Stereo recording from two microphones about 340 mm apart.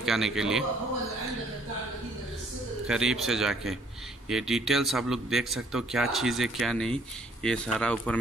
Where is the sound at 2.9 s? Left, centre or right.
Centre.